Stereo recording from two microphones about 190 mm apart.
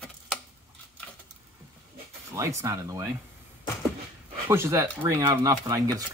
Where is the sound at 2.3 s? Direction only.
15° right (ahead or behind).